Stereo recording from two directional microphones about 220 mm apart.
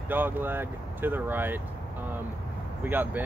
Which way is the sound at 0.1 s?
10° right (ahead or behind).